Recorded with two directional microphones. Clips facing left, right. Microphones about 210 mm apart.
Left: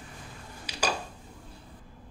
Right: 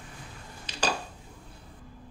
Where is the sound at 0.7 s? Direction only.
10° left (ahead or behind).